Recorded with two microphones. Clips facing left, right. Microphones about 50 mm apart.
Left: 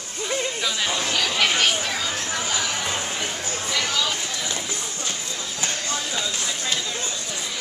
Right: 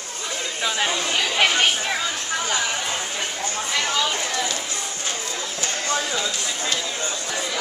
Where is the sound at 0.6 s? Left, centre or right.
Right.